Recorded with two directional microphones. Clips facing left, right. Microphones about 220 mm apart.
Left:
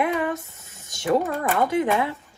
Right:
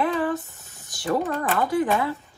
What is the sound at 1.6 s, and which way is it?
Speech, 20° left (ahead or behind).